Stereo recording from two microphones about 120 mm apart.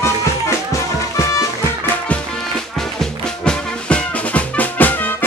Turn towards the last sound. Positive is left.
turn(degrees=15)  # may be behind; listen again after turning